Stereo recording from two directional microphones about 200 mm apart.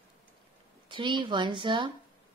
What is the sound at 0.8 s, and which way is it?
Speech, 25° right (ahead or behind).